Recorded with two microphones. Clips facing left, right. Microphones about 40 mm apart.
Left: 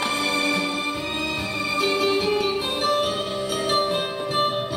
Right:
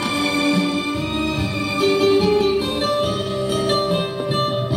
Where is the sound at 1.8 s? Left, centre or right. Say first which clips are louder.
Right 7 dB; centre.